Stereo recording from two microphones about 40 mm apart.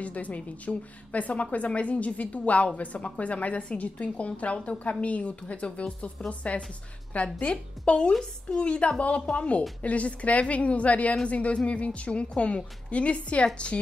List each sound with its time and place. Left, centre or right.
0.0 s a woman's voice: left